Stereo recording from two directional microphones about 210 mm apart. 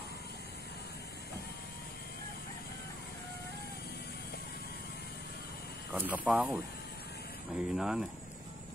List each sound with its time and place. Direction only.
5.9 s speech: 10° right (ahead or behind)